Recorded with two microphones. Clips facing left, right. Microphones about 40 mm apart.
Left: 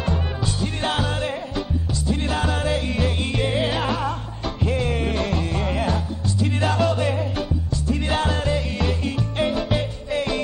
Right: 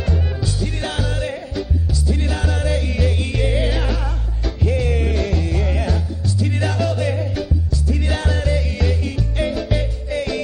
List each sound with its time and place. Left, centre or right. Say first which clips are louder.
0.0 s music: right 1 dB; centre